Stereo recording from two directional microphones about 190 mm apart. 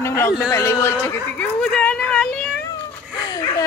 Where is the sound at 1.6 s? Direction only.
5° left (ahead or behind).